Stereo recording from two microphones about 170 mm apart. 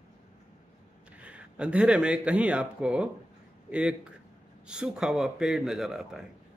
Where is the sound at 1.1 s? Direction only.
5° right (ahead or behind).